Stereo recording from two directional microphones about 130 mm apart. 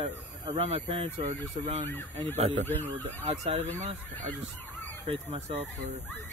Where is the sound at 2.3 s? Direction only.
55° right (ahead or behind).